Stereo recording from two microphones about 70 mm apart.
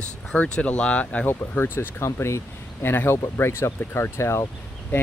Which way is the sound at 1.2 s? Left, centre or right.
Left.